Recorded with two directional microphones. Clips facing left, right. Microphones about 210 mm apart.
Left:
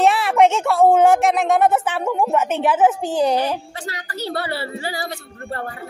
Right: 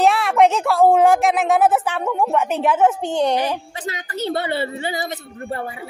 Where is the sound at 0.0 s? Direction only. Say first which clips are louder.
Even; centre (ahead or behind).